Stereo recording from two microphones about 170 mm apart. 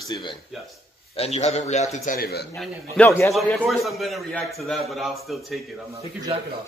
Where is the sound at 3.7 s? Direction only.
Centre (ahead or behind).